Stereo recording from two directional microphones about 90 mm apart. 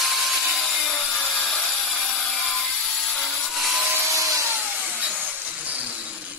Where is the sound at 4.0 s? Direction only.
35° right (ahead or behind).